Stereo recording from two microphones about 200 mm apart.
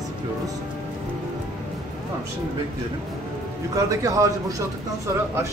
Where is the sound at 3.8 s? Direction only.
15° right (ahead or behind).